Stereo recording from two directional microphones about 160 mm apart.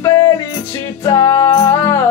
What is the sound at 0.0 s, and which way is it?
Music, 20° left (ahead or behind).